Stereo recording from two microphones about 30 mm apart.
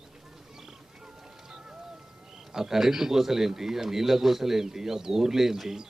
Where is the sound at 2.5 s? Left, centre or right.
Centre.